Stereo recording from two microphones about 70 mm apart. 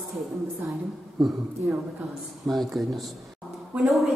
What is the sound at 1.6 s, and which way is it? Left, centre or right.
Speech, right.